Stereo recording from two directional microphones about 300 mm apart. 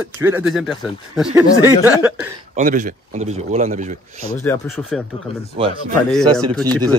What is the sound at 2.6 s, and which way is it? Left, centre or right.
A man's voice, right.